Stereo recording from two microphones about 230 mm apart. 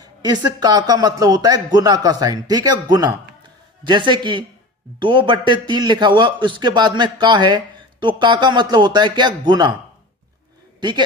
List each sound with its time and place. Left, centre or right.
0.0 s a man's voice: centre